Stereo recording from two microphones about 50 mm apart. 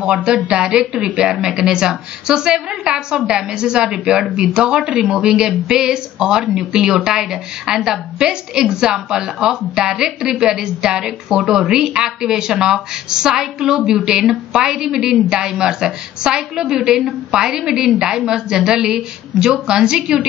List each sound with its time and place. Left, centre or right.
0.0 s a woman's voice: right